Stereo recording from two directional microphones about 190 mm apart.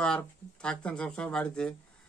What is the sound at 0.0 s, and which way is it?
Speech, 5° left (ahead or behind).